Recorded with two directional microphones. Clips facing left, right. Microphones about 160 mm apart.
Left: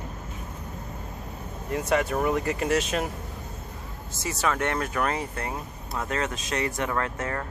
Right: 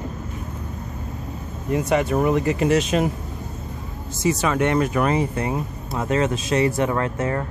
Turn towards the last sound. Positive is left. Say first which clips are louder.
# right 6 dB
turn(degrees=-20)  # may be behind; listen again after turning